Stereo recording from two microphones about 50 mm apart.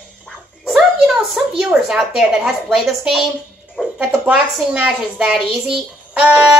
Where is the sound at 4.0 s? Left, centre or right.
Right.